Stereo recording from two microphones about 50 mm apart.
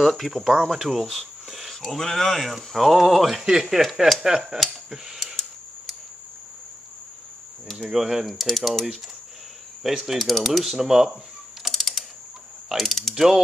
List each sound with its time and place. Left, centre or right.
0.0 s speech: centre
3.8 s speech: right
4.2 s a sound: centre
5.2 s a sound: centre
7.6 s speech: centre
7.9 s speech: centre
11.6 s typing: centre
12.6 s speech: centre
13.1 s a sound: centre